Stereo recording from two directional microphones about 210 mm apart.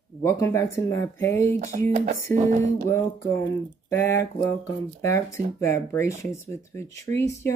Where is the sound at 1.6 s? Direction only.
40° right (ahead or behind).